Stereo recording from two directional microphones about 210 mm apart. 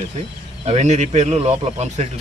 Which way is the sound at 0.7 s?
30° right (ahead or behind).